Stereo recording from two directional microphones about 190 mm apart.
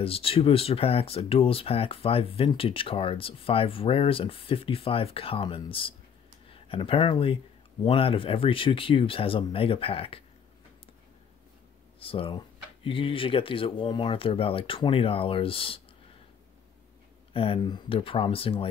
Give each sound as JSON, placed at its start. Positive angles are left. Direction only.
{"t": 0.0, "sound": "speech", "side_deg": 30}
{"t": 12.0, "sound": "speech", "side_deg": 30}
{"t": 17.3, "sound": "speech", "side_deg": 30}